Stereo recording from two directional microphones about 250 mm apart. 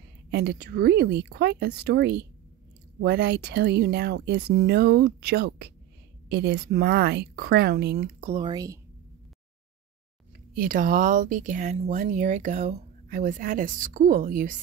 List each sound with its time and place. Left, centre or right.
0.3 s speech: right; by 8.7 s centre
10.5 s speech: right